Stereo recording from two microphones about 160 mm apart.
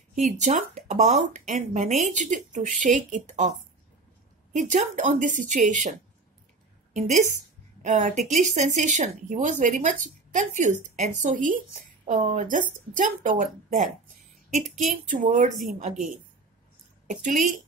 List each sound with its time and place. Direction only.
0.1 s a woman's voice: 50° right (ahead or behind)
15.0 s a woman's voice: 55° right (ahead or behind)
17.1 s a woman's voice: 55° right (ahead or behind)